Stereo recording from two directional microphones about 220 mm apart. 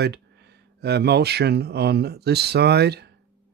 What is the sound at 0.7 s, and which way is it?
Speech, 50° right (ahead or behind).